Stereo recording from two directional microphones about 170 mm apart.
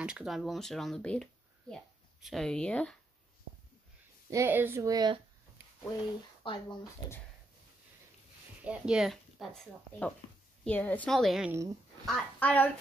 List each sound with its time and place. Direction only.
0.0 s speech: 5° right (ahead or behind)
4.3 s speech: 15° right (ahead or behind)
6.4 s speech: 30° left (ahead or behind)
8.6 s speech: 5° right (ahead or behind)